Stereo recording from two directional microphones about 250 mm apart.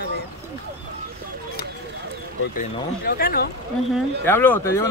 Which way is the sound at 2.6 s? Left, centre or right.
Left.